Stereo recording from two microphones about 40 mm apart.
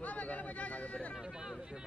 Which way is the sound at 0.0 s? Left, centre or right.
Left.